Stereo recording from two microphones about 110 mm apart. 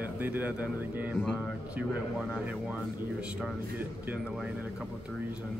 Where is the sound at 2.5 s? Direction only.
15° right (ahead or behind).